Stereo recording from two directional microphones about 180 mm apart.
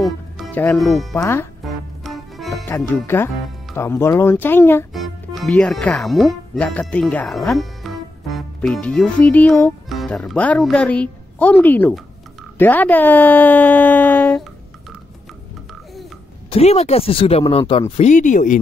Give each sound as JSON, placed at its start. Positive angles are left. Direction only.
{"t": 0.0, "sound": "speech", "side_deg": 5}
{"t": 1.1, "sound": "speech", "side_deg": 15}
{"t": 2.0, "sound": "music", "side_deg": 0}
{"t": 3.7, "sound": "speech", "side_deg": 15}
{"t": 4.9, "sound": "speech", "side_deg": 0}
{"t": 16.4, "sound": "speech", "side_deg": 35}